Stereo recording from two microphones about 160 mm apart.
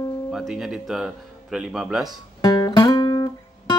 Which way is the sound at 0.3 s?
Centre (ahead or behind).